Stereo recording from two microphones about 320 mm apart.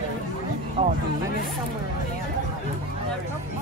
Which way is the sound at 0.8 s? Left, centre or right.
Centre.